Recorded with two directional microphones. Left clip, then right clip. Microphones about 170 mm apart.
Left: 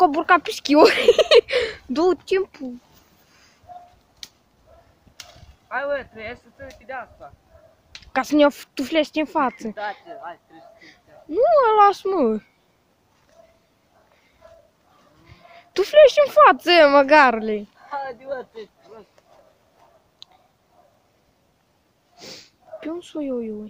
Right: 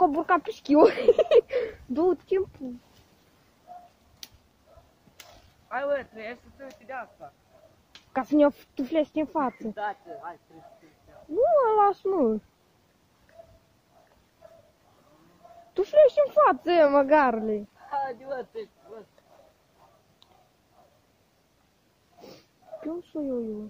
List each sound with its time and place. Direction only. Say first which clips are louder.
0.0 s speech: left 6 dB; 20° left (ahead or behind)
4.2 s a sound: left 6 dB; 20° left (ahead or behind)
5.7 s speech: left 3 dB; 25° left (ahead or behind)
8.1 s speech: left 5 dB; 15° left (ahead or behind); by 10.1 s 35° left (ahead or behind)
11.3 s speech: left 6 dB; 20° left (ahead or behind)
15.7 s speech: left 6 dB; 30° left (ahead or behind)
17.8 s speech: right 2 dB; 30° left (ahead or behind)
20.2 s a sound: left 13 dB; 5° right (ahead or behind)
22.2 s sniff: left 8 dB; 15° left (ahead or behind)